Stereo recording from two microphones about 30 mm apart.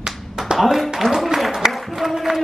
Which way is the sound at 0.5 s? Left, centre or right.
Centre.